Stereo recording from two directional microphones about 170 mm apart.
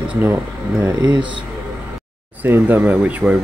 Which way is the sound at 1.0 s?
25° right (ahead or behind).